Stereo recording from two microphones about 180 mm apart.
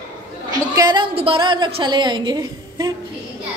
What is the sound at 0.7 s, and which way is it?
A woman's voice, 20° right (ahead or behind).